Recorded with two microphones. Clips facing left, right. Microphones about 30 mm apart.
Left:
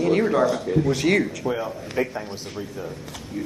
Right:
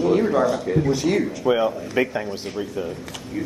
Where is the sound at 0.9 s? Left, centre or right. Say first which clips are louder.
Left 1 dB; left.